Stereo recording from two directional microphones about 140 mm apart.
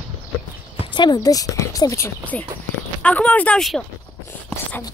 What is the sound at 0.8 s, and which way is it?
Speech, 35° left (ahead or behind).